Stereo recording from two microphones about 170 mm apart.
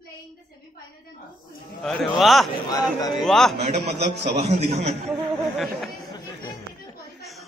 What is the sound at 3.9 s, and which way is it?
A man's voice, 40° right (ahead or behind).